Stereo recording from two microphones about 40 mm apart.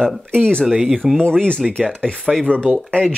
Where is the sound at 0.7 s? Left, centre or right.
Centre.